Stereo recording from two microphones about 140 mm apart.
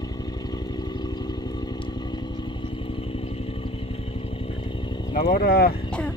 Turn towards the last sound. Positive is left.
turn(degrees=90)